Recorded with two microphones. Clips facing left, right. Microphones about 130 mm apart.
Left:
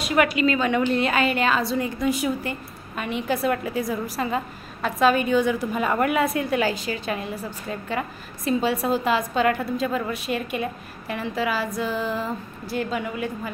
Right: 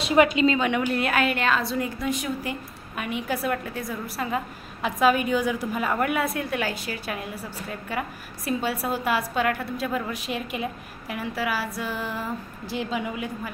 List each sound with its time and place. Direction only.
0.0 s a woman's voice: 25° right (ahead or behind)
0.7 s a woman's voice: 10° right (ahead or behind)
3.0 s a woman's voice: 10° right (ahead or behind)
5.0 s a woman's voice: 10° right (ahead or behind)
8.6 s a woman's voice: 5° right (ahead or behind)